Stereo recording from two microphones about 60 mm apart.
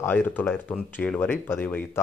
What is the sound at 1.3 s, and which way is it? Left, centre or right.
Speech, left.